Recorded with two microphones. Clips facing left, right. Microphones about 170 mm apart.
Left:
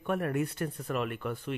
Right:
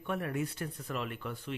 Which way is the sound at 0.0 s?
50° left (ahead or behind).